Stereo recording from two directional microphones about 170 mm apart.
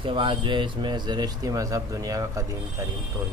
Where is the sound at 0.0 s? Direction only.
30° right (ahead or behind).